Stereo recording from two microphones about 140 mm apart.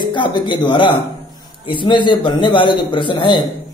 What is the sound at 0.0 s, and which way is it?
Speech, 35° left (ahead or behind).